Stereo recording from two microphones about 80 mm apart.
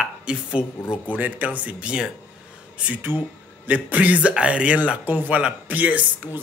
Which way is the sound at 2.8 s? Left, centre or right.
Right.